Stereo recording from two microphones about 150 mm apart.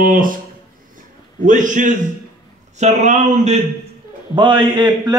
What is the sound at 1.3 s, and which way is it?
A man's voice, 60° right (ahead or behind).